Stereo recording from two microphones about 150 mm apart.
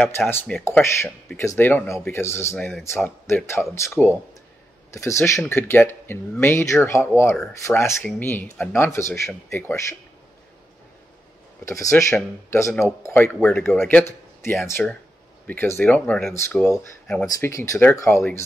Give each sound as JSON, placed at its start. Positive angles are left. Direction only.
{"t": 0.3, "sound": "speech", "side_deg": 15}
{"t": 4.0, "sound": "speech", "side_deg": -5}
{"t": 4.9, "sound": "speech", "side_deg": 20}
{"t": 11.6, "sound": "speech", "side_deg": 20}
{"t": 17.5, "sound": "speech", "side_deg": 20}